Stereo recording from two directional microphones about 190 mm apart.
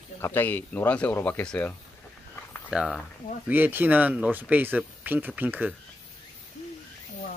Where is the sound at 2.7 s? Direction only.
Centre (ahead or behind).